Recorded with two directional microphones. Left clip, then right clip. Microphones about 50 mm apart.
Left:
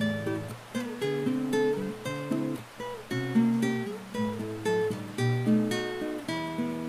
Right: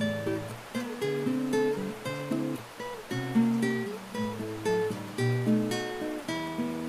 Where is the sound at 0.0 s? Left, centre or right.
Centre.